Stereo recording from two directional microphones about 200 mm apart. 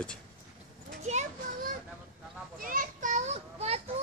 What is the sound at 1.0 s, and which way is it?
Children playing, 35° right (ahead or behind).